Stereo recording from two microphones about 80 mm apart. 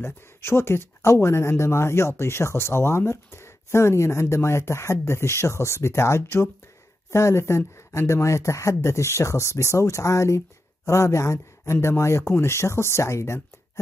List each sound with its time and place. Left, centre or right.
0.0 s speech: left